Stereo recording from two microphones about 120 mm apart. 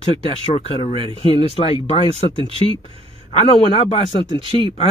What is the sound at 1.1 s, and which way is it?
Speech, 50° left (ahead or behind).